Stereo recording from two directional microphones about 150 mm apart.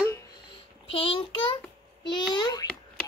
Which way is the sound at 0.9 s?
40° left (ahead or behind).